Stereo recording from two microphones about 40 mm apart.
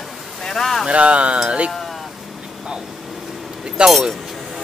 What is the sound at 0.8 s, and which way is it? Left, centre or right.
Speech, right.